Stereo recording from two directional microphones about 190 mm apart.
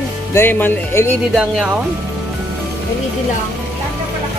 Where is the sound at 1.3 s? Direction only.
5° right (ahead or behind).